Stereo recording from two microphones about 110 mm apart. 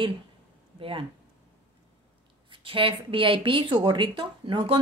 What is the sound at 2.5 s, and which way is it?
A woman's voice, 55° right (ahead or behind).